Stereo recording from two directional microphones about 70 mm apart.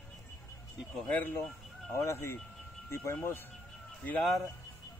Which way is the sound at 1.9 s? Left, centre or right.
Left.